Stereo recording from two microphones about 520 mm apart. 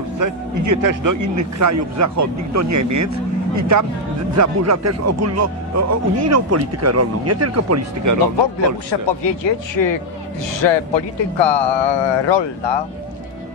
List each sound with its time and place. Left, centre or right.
0.2 s speech: right
9.0 s speech: left